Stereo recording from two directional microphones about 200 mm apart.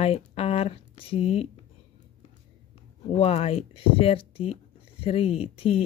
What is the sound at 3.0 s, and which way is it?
Speech, 30° left (ahead or behind).